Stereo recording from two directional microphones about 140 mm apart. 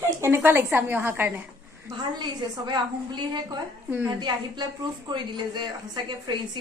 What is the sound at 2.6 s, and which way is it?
Speech, 30° right (ahead or behind).